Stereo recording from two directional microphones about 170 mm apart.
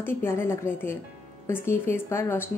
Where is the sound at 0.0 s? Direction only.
15° left (ahead or behind).